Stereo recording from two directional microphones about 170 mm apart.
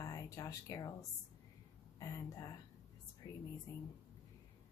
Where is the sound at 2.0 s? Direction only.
20° left (ahead or behind).